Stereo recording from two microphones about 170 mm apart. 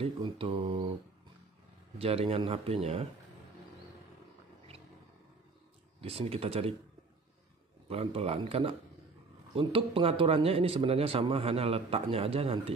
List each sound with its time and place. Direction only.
0.0 s speech: 35° right (ahead or behind)
2.0 s speech: 35° right (ahead or behind)
5.9 s speech: 35° right (ahead or behind)
7.9 s speech: 35° right (ahead or behind)